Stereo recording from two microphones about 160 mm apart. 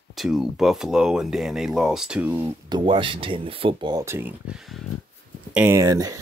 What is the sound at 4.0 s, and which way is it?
Speech, 15° right (ahead or behind).